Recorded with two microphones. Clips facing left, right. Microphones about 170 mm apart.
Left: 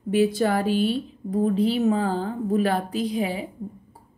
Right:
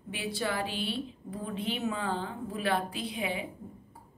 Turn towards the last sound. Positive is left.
turn(degrees=40)  # may be behind; listen again after turning